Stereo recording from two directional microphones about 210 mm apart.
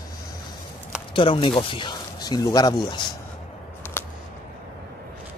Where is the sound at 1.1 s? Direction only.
25° left (ahead or behind).